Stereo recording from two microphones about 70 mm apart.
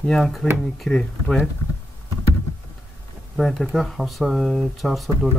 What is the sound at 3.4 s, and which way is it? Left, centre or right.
Speech, centre.